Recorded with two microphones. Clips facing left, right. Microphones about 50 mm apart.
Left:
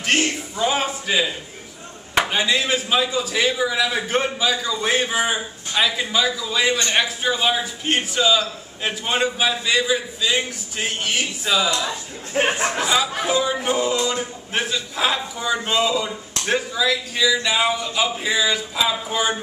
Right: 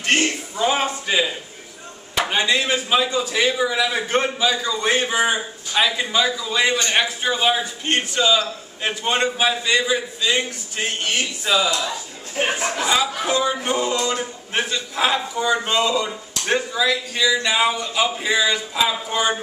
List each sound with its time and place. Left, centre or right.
0.0 s a sound: centre
0.8 s a man's voice: centre
12.5 s speech: left
12.8 s a man's voice: centre